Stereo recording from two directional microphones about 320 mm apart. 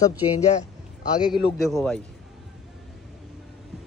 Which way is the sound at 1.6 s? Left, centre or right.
Centre.